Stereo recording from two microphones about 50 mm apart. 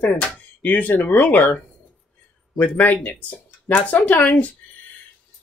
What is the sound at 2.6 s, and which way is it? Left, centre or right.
Speech, left.